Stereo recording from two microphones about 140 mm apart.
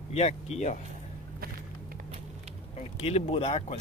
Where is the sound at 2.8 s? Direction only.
45° left (ahead or behind).